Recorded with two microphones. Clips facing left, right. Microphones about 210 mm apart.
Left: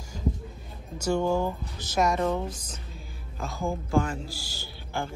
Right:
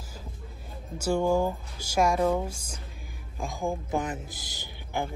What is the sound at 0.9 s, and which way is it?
A man's voice, 10° right (ahead or behind).